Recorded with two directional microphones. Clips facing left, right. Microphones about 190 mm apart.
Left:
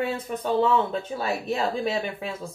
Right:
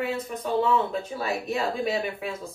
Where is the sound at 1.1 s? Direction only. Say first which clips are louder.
Left 2 dB; 30° left (ahead or behind).